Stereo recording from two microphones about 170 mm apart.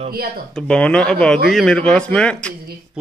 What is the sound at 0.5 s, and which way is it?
Speech, 5° left (ahead or behind).